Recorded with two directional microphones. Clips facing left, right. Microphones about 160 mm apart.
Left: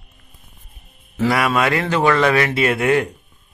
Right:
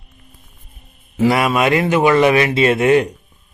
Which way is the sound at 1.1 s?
20° right (ahead or behind).